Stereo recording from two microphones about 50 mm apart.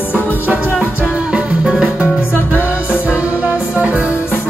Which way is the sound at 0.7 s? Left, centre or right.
Right.